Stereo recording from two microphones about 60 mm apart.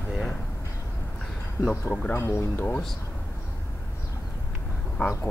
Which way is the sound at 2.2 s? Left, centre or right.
Left.